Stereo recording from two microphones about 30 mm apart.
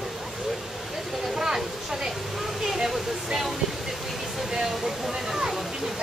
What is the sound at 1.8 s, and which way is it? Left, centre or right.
Speech, centre.